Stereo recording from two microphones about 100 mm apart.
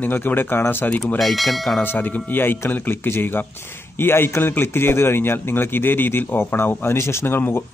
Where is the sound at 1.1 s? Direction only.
Centre (ahead or behind).